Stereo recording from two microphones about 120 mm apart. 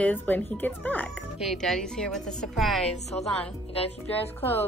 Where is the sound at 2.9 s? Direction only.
65° left (ahead or behind).